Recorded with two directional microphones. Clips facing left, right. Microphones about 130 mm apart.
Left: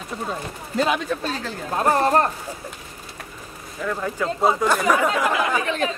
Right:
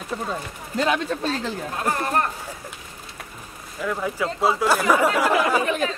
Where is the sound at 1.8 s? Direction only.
35° left (ahead or behind).